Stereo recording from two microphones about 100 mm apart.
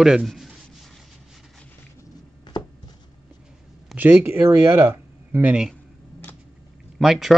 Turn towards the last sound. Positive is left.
turn(degrees=0)  # may be behind; listen again after turning